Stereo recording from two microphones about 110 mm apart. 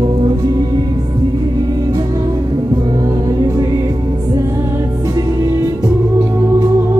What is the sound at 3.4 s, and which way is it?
Music, 35° right (ahead or behind).